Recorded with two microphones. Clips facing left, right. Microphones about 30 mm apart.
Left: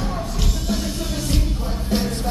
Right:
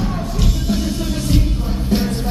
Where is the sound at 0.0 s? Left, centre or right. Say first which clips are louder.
Right 4 dB; centre.